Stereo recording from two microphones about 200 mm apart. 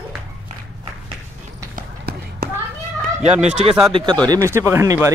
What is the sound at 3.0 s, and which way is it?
Speech, 35° right (ahead or behind).